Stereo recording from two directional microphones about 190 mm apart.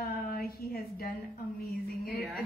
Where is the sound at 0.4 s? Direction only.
55° left (ahead or behind).